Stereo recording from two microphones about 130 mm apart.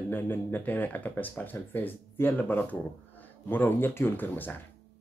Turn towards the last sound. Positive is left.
turn(degrees=15)  # may be behind; listen again after turning